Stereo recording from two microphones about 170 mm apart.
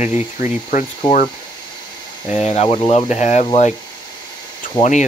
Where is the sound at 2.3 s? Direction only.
40° left (ahead or behind).